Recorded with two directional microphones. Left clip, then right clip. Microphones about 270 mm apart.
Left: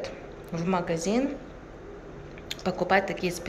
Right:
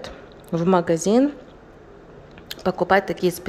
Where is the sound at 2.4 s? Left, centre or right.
Centre.